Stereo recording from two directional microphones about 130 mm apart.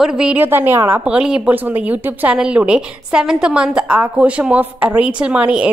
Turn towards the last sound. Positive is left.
turn(degrees=-10)  # may be behind; listen again after turning